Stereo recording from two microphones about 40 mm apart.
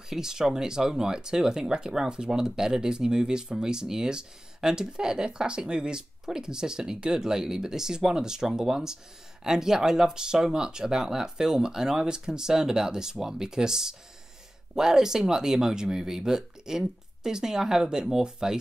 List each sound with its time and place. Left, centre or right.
0.1 s speech: centre